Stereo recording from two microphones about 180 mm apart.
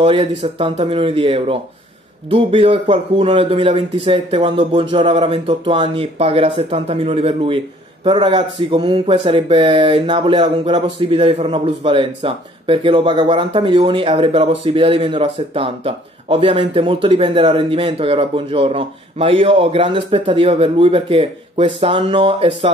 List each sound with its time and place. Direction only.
0.0 s speech: 30° right (ahead or behind)